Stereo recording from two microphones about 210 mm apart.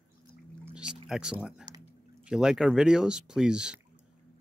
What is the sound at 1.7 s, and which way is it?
Drip, 20° right (ahead or behind).